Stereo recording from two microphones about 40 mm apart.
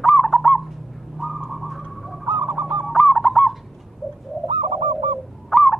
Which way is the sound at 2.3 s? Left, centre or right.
Right.